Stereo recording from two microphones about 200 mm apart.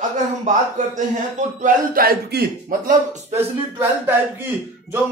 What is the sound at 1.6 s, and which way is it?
Speech, 45° right (ahead or behind).